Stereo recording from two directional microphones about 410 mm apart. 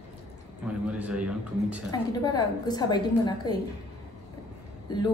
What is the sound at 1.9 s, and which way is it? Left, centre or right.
A woman's voice, centre.